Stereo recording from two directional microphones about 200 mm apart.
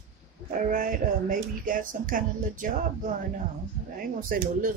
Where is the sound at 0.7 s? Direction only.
45° right (ahead or behind).